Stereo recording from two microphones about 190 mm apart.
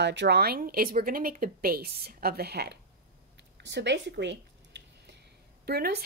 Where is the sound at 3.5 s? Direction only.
65° right (ahead or behind).